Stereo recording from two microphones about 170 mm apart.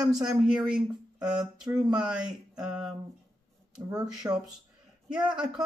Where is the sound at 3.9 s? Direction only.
25° right (ahead or behind).